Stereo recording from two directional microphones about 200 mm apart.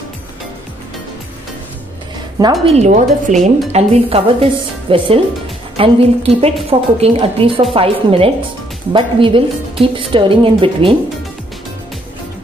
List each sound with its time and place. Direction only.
2.6 s a woman's voice: 35° right (ahead or behind)